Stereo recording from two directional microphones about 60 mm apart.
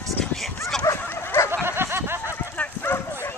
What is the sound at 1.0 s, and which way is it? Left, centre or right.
Dog, left.